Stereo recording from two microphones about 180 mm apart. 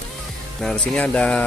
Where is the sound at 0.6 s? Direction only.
5° left (ahead or behind).